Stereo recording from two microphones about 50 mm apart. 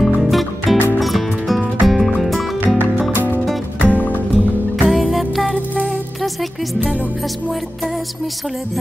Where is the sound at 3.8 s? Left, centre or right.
Left.